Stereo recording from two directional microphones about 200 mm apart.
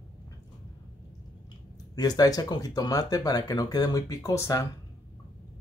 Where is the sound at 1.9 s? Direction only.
20° left (ahead or behind).